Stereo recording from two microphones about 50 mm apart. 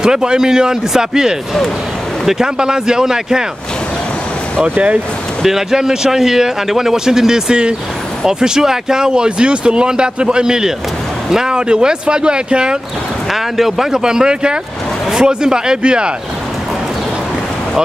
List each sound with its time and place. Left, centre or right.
0.0 s speech: centre
4.6 s speech: right
5.4 s speech: centre
13.3 s speech: centre